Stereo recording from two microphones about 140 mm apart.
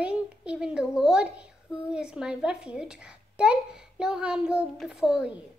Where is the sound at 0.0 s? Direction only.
10° right (ahead or behind).